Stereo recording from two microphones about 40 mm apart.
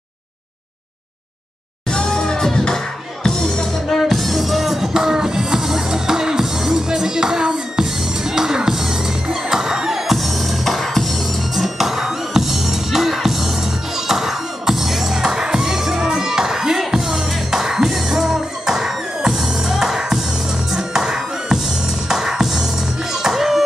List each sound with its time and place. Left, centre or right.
1.9 s music: centre
10.1 s music: centre